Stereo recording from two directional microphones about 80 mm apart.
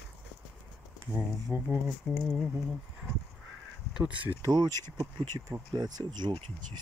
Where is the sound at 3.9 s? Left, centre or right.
Centre.